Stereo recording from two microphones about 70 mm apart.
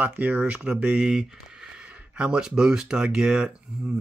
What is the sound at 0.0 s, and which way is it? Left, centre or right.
Speech, right.